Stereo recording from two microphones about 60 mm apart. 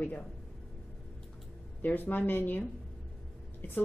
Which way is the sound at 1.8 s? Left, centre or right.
Left.